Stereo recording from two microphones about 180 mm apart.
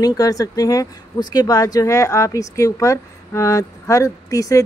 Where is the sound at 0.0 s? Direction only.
20° left (ahead or behind).